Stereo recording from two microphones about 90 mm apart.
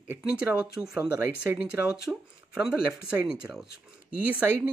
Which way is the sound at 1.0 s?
25° right (ahead or behind).